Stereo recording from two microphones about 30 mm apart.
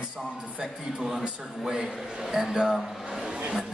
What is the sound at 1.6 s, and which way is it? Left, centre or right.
Speech, right.